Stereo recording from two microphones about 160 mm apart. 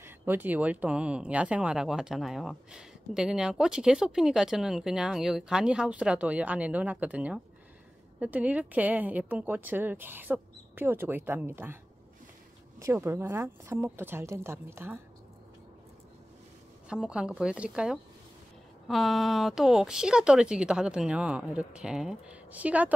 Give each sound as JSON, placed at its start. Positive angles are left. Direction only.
{"t": 0.0, "sound": "a woman's voice", "side_deg": -10}
{"t": 16.9, "sound": "speech", "side_deg": -5}